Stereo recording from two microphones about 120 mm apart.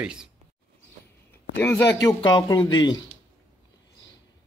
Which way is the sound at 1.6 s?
25° left (ahead or behind).